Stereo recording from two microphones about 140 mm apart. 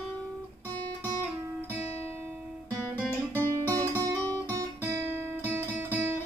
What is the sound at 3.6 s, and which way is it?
Music, 25° right (ahead or behind).